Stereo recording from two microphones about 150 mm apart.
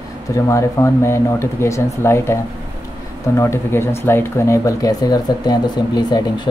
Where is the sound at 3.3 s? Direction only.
15° left (ahead or behind).